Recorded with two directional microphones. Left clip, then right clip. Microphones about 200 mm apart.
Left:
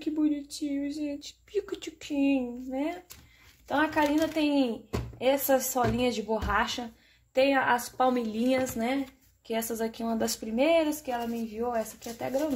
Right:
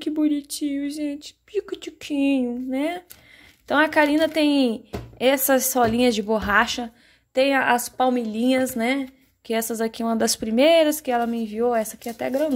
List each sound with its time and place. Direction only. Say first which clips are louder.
0.0 s speech: right 6 dB; 40° right (ahead or behind)
1.2 s speech: right 5 dB; 20° right (ahead or behind)
2.0 s speech: right 6 dB; 40° right (ahead or behind)
8.1 s speech: right 5 dB; 20° right (ahead or behind); by 12.4 s 35° right (ahead or behind)